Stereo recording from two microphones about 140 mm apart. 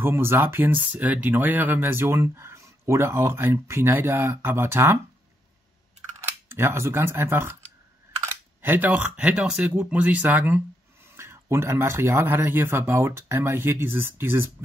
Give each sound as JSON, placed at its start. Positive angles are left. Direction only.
{"t": 0.0, "sound": "speech", "side_deg": -15}
{"t": 6.2, "sound": "speech", "side_deg": -15}
{"t": 8.6, "sound": "speech", "side_deg": -10}